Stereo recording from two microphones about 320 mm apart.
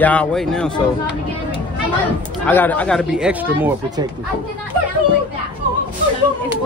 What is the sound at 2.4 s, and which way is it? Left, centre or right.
Speech, centre.